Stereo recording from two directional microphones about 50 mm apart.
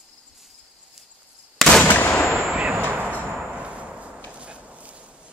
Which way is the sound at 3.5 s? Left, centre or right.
Right.